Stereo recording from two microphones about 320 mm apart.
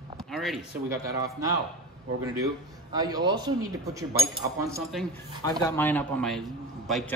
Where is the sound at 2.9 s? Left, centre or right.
Centre.